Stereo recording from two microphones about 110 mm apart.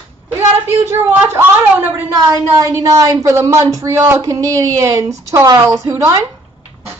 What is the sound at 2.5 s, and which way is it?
Speech, 30° right (ahead or behind).